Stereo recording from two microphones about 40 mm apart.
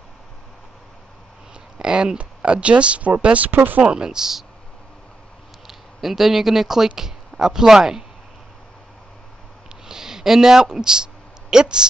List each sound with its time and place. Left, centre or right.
1.8 s speech: right
3.4 s speech: right
3.8 s speech: right
5.7 s speech: centre
9.8 s speech: centre